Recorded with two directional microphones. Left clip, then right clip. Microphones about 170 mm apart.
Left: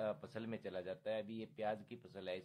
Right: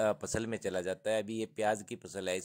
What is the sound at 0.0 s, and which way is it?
Speech, 50° right (ahead or behind).